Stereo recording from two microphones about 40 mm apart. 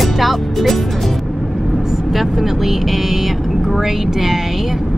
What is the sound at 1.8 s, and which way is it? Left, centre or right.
Speech, centre.